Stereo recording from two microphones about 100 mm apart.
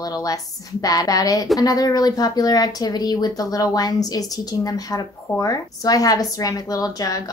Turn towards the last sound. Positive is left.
turn(degrees=35)  # may be behind; listen again after turning